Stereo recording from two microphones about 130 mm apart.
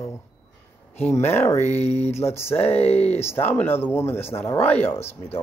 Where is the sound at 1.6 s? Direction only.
55° left (ahead or behind).